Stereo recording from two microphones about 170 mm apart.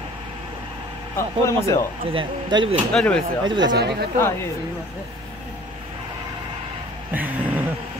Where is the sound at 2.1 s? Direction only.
30° right (ahead or behind).